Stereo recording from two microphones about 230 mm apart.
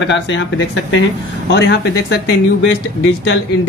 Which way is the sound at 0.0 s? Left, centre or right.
Left.